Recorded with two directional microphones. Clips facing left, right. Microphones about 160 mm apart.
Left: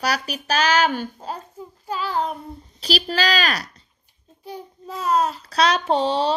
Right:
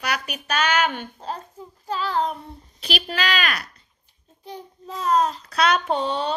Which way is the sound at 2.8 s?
35° left (ahead or behind).